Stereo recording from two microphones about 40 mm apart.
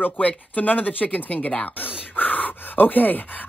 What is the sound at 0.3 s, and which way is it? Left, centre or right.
Speech, left.